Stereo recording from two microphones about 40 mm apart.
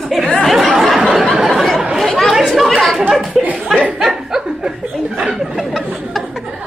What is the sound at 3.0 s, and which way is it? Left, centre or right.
Speech, centre.